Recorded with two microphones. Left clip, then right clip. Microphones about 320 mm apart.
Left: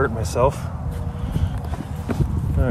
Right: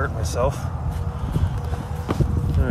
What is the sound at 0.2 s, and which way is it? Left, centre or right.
Speech, centre.